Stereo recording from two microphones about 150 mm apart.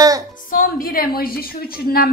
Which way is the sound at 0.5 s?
75° left (ahead or behind).